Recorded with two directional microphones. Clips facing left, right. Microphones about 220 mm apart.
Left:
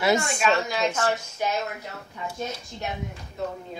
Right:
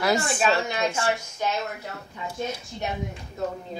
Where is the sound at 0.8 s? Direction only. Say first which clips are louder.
Left 1 dB; 10° right (ahead or behind).